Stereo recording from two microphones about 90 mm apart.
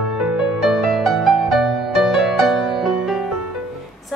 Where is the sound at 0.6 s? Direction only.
5° right (ahead or behind).